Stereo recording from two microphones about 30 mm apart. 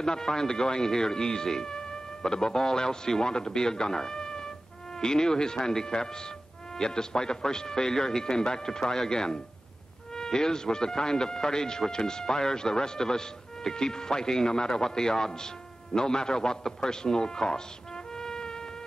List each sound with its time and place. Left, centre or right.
0.0 s speech: left
18.1 s music: left